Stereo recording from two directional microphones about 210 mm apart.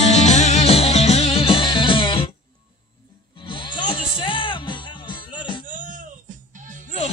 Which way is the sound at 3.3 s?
25° left (ahead or behind).